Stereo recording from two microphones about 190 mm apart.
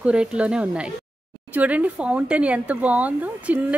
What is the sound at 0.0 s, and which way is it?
A woman's voice, 5° right (ahead or behind).